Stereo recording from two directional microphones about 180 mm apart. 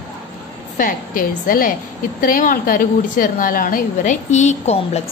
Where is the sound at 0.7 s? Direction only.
50° left (ahead or behind).